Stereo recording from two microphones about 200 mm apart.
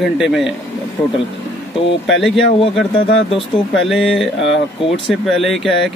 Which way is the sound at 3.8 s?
Centre (ahead or behind).